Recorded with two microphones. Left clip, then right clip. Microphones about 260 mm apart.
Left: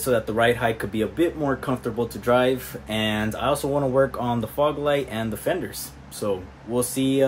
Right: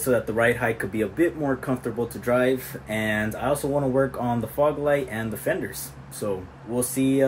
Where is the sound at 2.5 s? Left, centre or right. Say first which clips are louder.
Even; centre.